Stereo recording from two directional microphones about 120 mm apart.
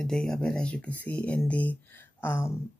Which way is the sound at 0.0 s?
5° left (ahead or behind).